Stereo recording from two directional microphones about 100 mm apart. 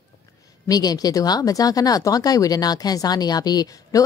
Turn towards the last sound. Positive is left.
turn(degrees=35)  # may be behind; listen again after turning